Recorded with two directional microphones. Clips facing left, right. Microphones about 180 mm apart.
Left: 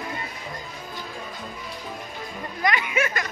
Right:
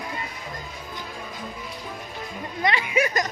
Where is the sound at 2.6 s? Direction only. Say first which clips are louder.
Right 1 dB; 30° right (ahead or behind).